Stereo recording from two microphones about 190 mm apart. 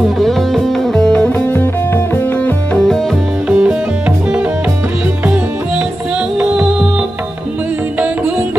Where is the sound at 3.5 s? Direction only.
5° right (ahead or behind).